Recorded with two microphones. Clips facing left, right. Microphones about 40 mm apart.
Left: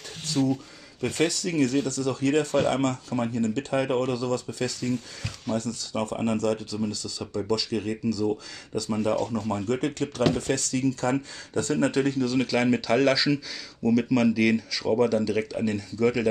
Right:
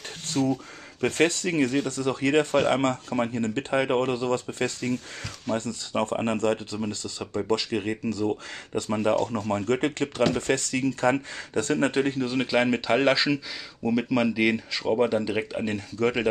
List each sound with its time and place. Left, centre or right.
0.4 s speech: centre
1.0 s speech: right